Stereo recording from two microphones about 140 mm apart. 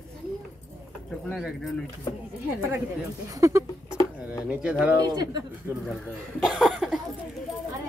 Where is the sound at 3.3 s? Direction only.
20° right (ahead or behind).